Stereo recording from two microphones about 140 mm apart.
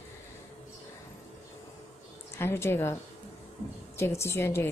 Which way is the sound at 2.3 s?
20° left (ahead or behind).